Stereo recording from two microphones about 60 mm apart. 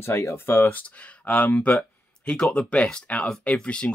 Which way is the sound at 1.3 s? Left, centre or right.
Left.